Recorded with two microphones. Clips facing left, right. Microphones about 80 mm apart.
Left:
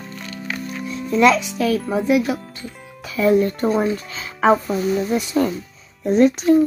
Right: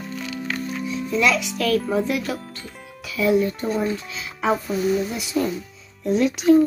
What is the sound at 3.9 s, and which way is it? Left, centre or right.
Music, left.